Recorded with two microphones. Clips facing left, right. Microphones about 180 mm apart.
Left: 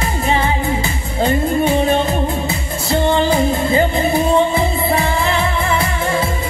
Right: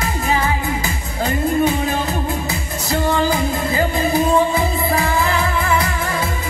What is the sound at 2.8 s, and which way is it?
Music, 30° left (ahead or behind).